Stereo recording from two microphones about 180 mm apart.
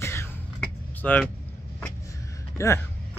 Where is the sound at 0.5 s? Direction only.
5° left (ahead or behind).